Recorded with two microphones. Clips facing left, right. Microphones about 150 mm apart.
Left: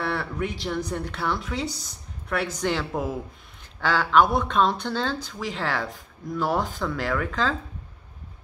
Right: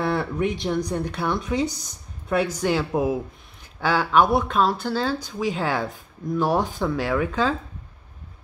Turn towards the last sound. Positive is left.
turn(degrees=-15)  # may be behind; listen again after turning